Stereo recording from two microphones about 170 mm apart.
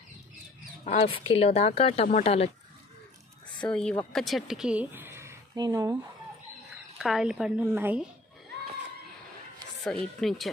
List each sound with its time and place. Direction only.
0.8 s speech: 35° left (ahead or behind)
3.6 s speech: 5° left (ahead or behind); by 5.9 s 20° right (ahead or behind)
7.0 s a woman's voice: centre (ahead or behind)
9.8 s a woman's voice: centre (ahead or behind)